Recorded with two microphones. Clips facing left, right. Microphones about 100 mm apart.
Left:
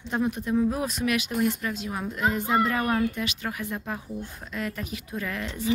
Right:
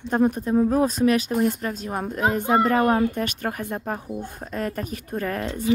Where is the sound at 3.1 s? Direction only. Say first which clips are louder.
Right 5 dB; 50° right (ahead or behind).